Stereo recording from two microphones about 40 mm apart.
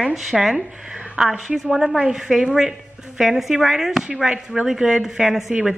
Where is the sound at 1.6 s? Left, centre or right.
Centre.